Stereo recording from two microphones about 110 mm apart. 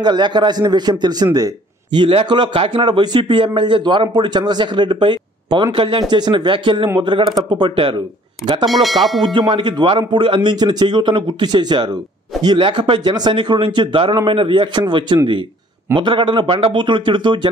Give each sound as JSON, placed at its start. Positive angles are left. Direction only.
{"t": 0.0, "sound": "a man's voice", "side_deg": -40}
{"t": 8.6, "sound": "speech", "side_deg": 0}
{"t": 9.2, "sound": "a man's voice", "side_deg": -45}